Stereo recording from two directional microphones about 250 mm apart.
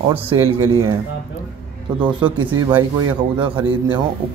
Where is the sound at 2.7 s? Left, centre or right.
Centre.